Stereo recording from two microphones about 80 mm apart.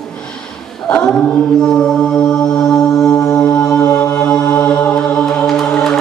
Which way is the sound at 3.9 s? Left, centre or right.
Centre.